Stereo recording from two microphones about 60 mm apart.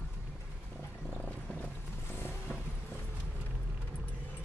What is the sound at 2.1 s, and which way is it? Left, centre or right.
Vehicle, left.